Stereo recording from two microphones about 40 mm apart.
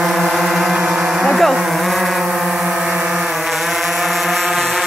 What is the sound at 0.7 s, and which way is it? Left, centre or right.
Music, centre.